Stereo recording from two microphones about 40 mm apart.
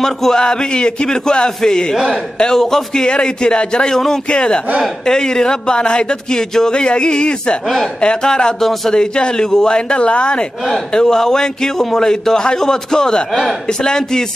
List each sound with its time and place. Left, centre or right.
0.0 s a man's voice: centre
3.9 s a man's voice: centre
4.3 s speech: left
7.6 s speech: centre
8.0 s speech: left
8.5 s a man's voice: centre
8.9 s a man's voice: left